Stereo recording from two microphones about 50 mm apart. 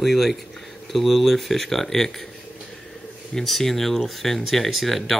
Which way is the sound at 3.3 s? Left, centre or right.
Centre.